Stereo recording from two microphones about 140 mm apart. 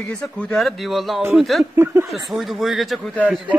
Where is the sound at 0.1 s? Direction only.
5° left (ahead or behind).